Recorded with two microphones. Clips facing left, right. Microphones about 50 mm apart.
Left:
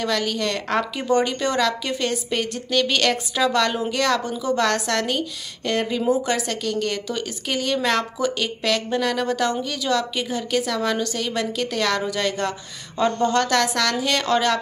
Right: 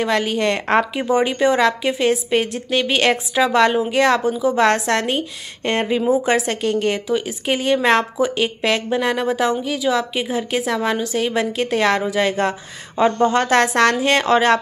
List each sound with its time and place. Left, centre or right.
0.0 s speech: right
1.0 s a woman's voice: centre
4.2 s a woman's voice: centre
4.6 s a woman's voice: right
7.1 s speech: centre